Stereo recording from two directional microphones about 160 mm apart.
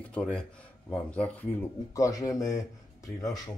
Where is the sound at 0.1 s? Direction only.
5° left (ahead or behind).